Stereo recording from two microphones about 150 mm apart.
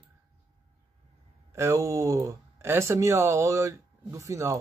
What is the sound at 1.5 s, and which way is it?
Speech, 15° right (ahead or behind).